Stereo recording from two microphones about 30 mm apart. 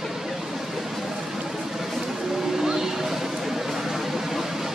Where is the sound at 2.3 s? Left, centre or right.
Centre.